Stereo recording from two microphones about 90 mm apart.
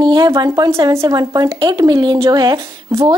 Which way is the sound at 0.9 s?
35° right (ahead or behind).